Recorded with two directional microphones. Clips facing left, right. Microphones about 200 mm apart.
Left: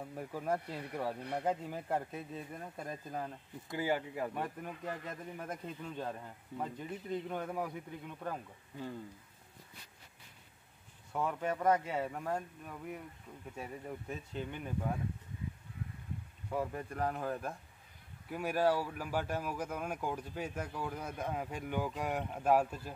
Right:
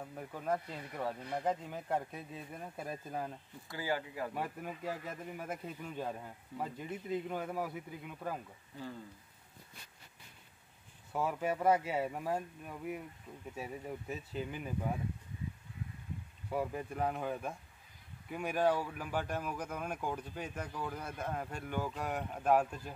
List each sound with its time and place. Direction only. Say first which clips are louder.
0.0 s speech: left 2 dB; 5° left (ahead or behind)
3.6 s speech: left 3 dB; 20° left (ahead or behind)
4.3 s speech: even; 5° right (ahead or behind)
11.1 s speech: right 1 dB; 5° right (ahead or behind)
16.4 s speech: right 1 dB; 5° right (ahead or behind)